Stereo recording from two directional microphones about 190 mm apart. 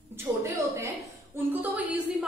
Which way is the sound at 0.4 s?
15° right (ahead or behind).